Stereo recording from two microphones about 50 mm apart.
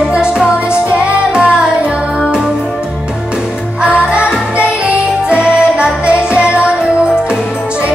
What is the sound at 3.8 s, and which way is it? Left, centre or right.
Music, right.